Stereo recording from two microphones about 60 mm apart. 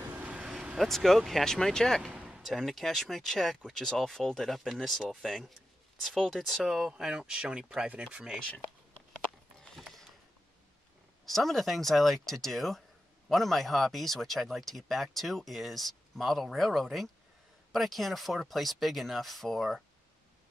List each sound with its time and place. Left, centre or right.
0.1 s vehicle: right
0.7 s speech: centre
2.1 s a sound: centre
2.4 s speech: centre
9.8 s mechanisms: centre
11.2 s speech: centre